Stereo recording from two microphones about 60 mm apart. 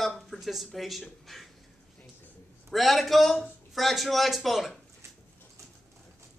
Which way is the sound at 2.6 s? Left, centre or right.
Centre.